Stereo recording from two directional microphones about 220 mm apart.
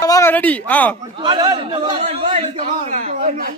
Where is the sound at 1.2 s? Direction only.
20° right (ahead or behind).